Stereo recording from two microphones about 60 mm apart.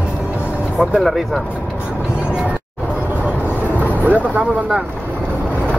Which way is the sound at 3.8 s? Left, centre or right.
Right.